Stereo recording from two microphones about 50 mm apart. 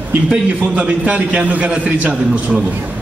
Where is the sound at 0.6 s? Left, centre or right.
Right.